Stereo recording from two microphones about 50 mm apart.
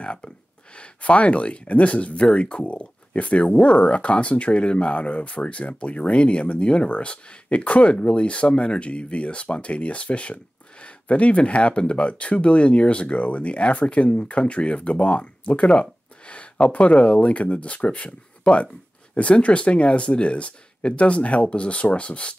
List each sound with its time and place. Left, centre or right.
0.0 s speech: left